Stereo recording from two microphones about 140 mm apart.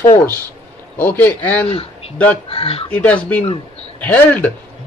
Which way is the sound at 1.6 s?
45° left (ahead or behind).